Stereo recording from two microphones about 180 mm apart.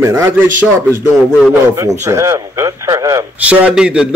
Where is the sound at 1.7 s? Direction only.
15° right (ahead or behind).